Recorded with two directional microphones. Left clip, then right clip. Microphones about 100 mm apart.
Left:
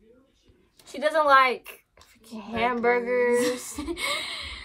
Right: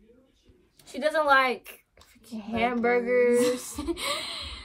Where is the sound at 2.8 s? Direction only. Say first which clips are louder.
Right 1 dB; 50° left (ahead or behind).